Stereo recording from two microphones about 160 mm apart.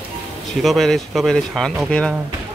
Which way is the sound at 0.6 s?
Centre (ahead or behind).